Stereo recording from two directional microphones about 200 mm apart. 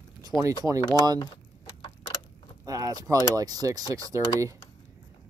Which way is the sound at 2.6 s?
15° right (ahead or behind).